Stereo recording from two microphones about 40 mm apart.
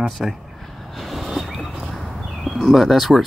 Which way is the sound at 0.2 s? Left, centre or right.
Centre.